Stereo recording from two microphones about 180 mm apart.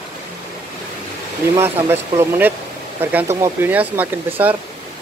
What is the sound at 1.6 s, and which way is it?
Speech, 15° right (ahead or behind).